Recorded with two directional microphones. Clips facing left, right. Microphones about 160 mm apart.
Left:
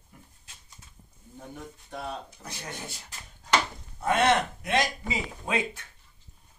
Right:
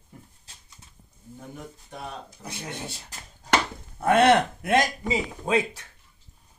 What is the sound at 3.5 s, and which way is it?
Speech, 60° right (ahead or behind).